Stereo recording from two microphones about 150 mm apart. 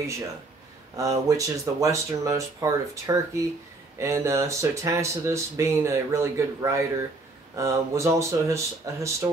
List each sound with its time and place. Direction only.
0.9 s speech: 20° right (ahead or behind)